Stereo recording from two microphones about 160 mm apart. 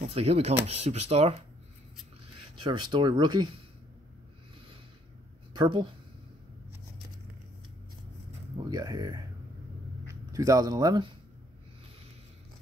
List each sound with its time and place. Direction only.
0.1 s speech: 40° right (ahead or behind)
2.6 s speech: 30° right (ahead or behind)
5.5 s speech: 30° right (ahead or behind)
8.6 s speech: 25° right (ahead or behind)